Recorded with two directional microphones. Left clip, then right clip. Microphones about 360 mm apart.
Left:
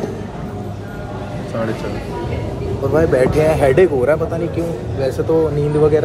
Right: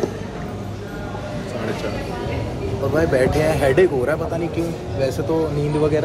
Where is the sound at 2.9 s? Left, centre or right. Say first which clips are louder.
Left 4 dB; centre.